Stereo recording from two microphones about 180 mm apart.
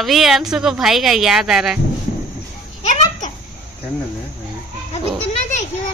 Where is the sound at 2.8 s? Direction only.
40° left (ahead or behind).